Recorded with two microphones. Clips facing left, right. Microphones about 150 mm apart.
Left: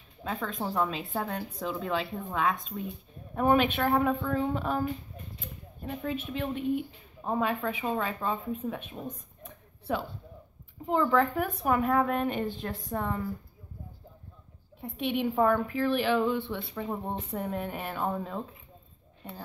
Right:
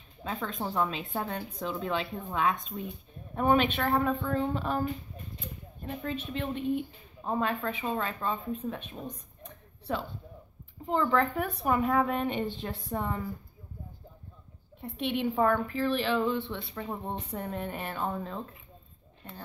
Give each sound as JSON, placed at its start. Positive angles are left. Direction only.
{"t": 0.2, "sound": "a woman's voice", "side_deg": 0}
{"t": 14.8, "sound": "a woman's voice", "side_deg": 5}